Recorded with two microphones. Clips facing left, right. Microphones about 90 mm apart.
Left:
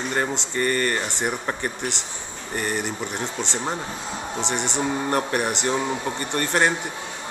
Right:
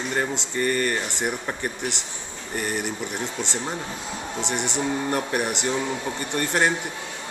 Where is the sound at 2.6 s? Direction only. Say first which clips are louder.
Left 1 dB; 5° right (ahead or behind).